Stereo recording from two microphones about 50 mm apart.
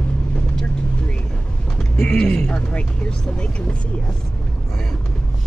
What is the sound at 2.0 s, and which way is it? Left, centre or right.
Speech, centre.